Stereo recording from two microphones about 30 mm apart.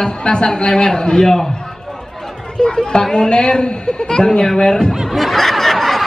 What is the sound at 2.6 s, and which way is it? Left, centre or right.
A man's voice, left.